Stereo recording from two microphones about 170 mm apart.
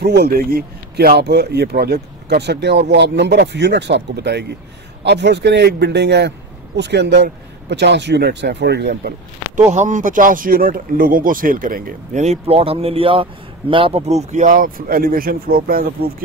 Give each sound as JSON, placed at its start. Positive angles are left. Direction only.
{"t": 0.0, "sound": "speech", "side_deg": -70}
{"t": 9.7, "sound": "speech", "side_deg": -45}